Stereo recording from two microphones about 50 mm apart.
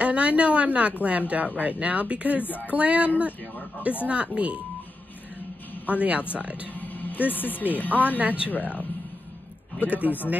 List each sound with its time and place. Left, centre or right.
0.0 s speech: right
2.4 s speech: left
2.7 s speech: right
5.9 s speech: right
6.7 s speech: left
8.2 s speech: right
8.5 s speech: left
9.8 s speech: right